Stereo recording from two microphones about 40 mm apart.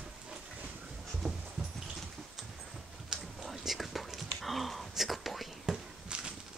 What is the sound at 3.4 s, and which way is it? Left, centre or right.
Whispering, centre.